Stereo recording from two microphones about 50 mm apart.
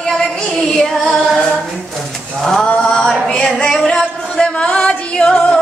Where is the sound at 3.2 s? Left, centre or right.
Centre.